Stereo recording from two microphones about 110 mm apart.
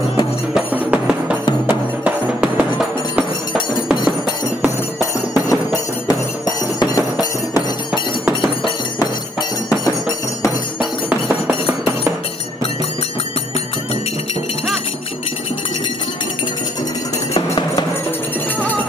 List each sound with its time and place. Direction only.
0.6 s music: 10° right (ahead or behind)
5.3 s music: 35° left (ahead or behind)
10.8 s music: 10° right (ahead or behind)